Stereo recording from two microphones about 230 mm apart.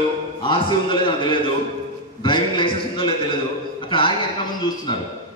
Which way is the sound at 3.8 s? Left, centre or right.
Left.